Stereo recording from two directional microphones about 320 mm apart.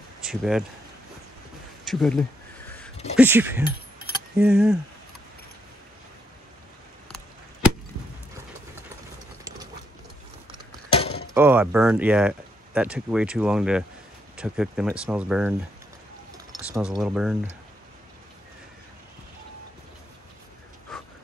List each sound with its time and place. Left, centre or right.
0.2 s speech: centre
1.9 s speech: centre
10.9 s a sound: centre
11.3 s speech: centre
17.0 s speech: centre